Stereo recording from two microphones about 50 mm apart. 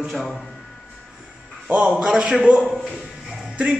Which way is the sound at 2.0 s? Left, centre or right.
Centre.